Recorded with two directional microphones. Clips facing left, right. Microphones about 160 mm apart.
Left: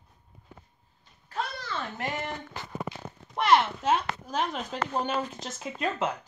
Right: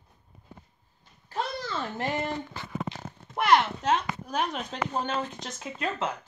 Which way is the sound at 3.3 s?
Centre (ahead or behind).